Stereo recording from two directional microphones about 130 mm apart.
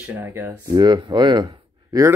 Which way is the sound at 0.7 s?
35° right (ahead or behind).